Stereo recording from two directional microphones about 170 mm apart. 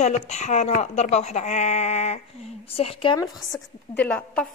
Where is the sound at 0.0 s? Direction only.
40° left (ahead or behind); by 3.6 s 25° left (ahead or behind).